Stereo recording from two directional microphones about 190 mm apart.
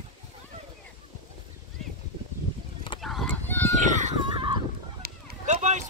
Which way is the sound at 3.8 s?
40° right (ahead or behind).